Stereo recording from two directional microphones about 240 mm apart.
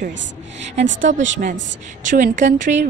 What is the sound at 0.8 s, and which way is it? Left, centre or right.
Speech, right.